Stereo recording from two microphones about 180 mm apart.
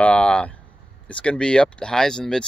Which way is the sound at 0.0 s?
5° left (ahead or behind).